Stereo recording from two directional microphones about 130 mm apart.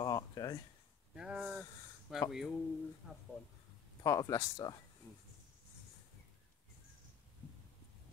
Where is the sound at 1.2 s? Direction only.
5° right (ahead or behind).